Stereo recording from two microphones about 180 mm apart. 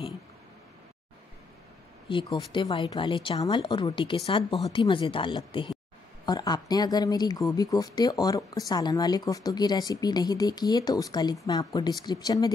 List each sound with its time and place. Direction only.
2.0 s speech: 25° left (ahead or behind)